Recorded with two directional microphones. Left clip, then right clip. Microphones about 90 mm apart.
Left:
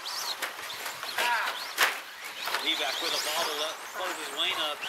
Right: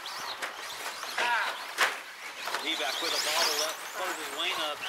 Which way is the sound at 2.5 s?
15° left (ahead or behind).